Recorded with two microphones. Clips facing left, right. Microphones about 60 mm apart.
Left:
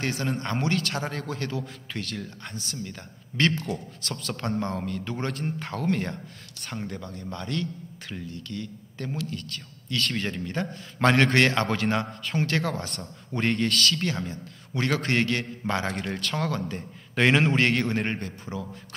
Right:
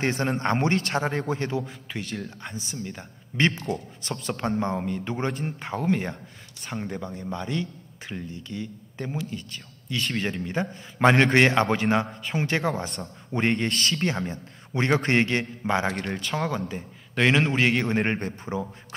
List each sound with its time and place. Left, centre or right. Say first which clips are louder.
0.0 s speech: right 4 dB; right
1.6 s speech: right 1 dB; centre
12.8 s a man's voice: right 3 dB; centre
13.3 s speech: right 1 dB; centre
16.0 s a man's voice: right 1 dB; centre
16.3 s speech: right 1 dB; centre
17.1 s a man's voice: even; centre
18.2 s speech: right 4 dB; right